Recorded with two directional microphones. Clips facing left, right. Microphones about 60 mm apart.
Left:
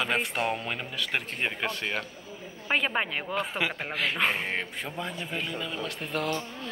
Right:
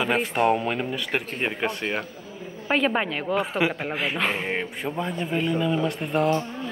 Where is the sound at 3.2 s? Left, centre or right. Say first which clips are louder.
Right 6 dB; centre.